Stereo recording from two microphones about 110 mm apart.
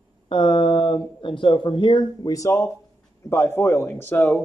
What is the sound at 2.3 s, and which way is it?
A man's voice, 30° left (ahead or behind).